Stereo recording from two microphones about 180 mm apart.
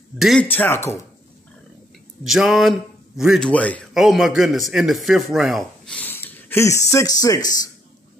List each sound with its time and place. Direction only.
0.2 s speech: 5° left (ahead or behind)
2.2 s speech: centre (ahead or behind); by 7.7 s 20° left (ahead or behind)